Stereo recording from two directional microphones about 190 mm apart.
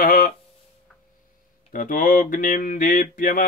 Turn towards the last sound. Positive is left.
turn(degrees=45)  # may be behind; listen again after turning